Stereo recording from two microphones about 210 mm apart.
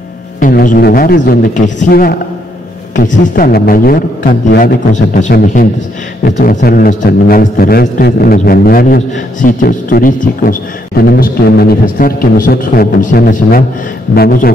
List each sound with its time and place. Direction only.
0.4 s a man's voice: 40° left (ahead or behind)